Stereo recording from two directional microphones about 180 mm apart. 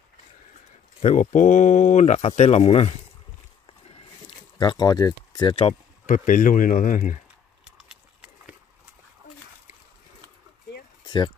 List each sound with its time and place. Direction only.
1.0 s speech: 40° left (ahead or behind)
3.6 s a sound: 30° left (ahead or behind)
6.0 s speech: 45° left (ahead or behind)
11.1 s speech: 25° left (ahead or behind)